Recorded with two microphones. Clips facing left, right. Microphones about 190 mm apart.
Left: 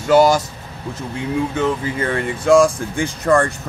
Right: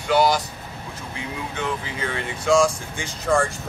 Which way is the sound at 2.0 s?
55° left (ahead or behind).